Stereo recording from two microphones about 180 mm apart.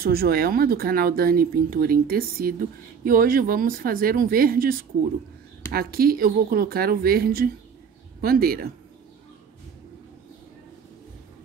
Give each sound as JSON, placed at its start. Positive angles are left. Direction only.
{"t": 0.0, "sound": "speech", "side_deg": -55}